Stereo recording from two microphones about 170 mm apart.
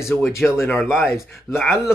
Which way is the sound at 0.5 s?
15° left (ahead or behind).